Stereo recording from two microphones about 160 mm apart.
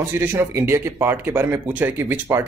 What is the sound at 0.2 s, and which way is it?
Speech, 15° right (ahead or behind).